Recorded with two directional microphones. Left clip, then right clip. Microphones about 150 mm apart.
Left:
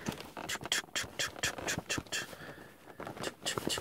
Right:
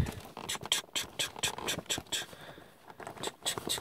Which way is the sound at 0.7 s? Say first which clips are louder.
Right 2 dB; 10° right (ahead or behind).